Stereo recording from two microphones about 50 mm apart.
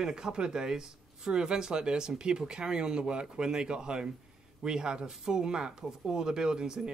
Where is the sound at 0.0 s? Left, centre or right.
Centre.